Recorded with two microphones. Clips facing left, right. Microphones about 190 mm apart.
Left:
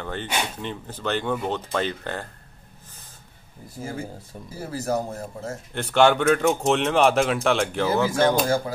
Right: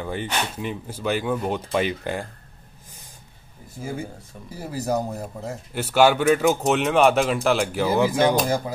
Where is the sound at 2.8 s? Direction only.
10° right (ahead or behind).